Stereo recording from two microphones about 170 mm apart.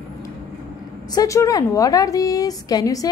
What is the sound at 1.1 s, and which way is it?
A woman's voice, 20° left (ahead or behind).